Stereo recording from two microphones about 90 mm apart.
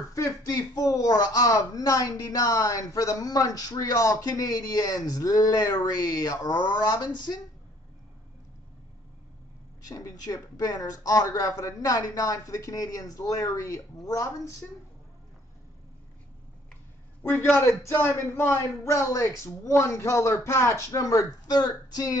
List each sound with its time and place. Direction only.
0.1 s speech: 40° left (ahead or behind)
9.8 s speech: 40° left (ahead or behind)
17.3 s speech: 25° left (ahead or behind); by 22.1 s 45° left (ahead or behind)